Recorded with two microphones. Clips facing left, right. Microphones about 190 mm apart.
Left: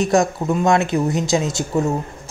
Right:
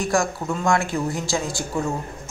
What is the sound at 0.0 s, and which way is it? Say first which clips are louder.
Speech: left 5 dB; 20° left (ahead or behind).